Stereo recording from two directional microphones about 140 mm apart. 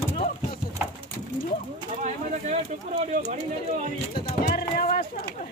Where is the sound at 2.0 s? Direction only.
55° right (ahead or behind).